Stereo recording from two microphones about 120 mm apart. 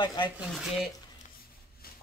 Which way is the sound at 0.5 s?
5° right (ahead or behind).